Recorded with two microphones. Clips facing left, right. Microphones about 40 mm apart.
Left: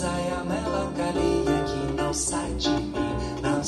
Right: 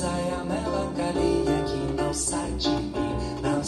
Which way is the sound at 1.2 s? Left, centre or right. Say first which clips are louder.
Even; left.